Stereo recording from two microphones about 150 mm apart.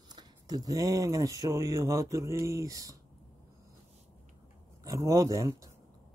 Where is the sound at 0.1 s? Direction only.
25° right (ahead or behind).